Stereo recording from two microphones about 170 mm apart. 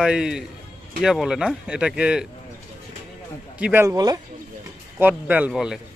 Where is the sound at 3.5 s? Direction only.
5° right (ahead or behind).